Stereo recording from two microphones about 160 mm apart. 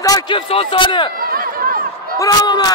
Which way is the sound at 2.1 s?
25° left (ahead or behind).